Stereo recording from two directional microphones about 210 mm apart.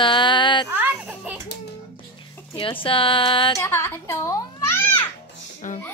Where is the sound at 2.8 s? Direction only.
25° left (ahead or behind).